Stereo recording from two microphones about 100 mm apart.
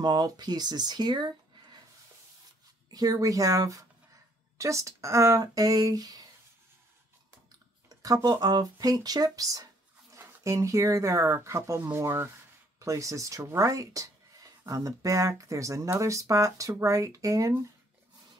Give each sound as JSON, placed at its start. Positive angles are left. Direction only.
{"t": 0.0, "sound": "speech", "side_deg": -45}
{"t": 2.9, "sound": "speech", "side_deg": -40}
{"t": 8.0, "sound": "speech", "side_deg": -35}